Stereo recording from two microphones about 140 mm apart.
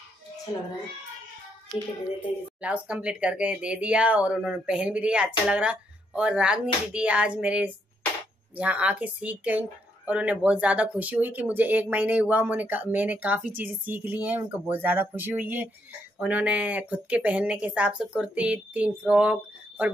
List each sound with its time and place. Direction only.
2.2 s speech: 10° right (ahead or behind)